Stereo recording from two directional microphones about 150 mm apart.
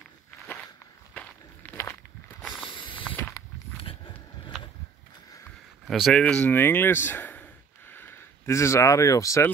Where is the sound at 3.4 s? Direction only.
25° left (ahead or behind).